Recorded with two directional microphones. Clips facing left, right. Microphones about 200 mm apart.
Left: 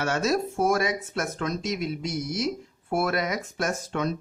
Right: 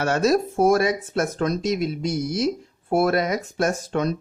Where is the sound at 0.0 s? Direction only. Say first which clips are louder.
Right 5 dB; 40° right (ahead or behind).